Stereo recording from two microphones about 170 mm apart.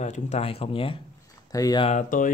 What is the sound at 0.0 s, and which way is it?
Speech, 40° left (ahead or behind).